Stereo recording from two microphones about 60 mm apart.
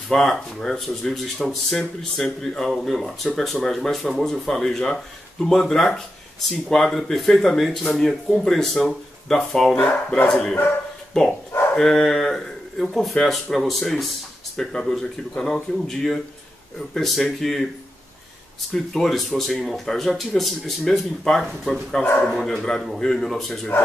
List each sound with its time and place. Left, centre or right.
0.1 s speech: centre
9.8 s speech: left
10.2 s speech: centre
18.9 s speech: centre